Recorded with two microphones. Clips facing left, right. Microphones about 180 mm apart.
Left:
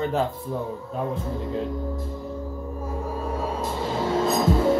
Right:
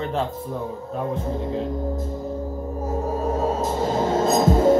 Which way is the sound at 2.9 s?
40° right (ahead or behind).